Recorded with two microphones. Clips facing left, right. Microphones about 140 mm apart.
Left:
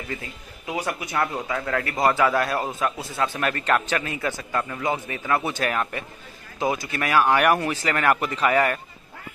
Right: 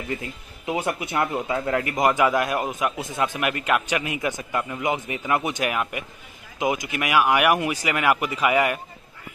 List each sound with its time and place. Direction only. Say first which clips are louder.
0.7 s speech: right 1 dB; 20° right (ahead or behind)